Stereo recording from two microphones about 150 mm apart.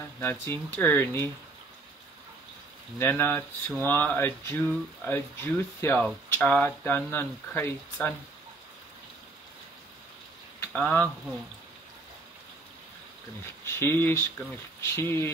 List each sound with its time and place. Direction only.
0.2 s speech: 15° left (ahead or behind)
3.0 s speech: 15° left (ahead or behind)
10.6 s speech: 10° left (ahead or behind)
13.7 s speech: 15° left (ahead or behind)